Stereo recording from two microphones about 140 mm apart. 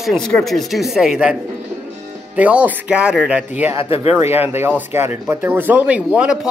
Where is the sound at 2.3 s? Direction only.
10° right (ahead or behind).